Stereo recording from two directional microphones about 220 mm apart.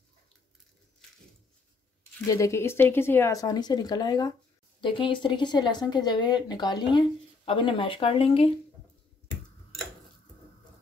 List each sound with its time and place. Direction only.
2.2 s speech: 15° left (ahead or behind)